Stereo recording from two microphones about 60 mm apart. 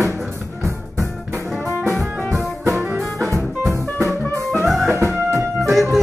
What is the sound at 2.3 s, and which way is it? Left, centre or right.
Music, right.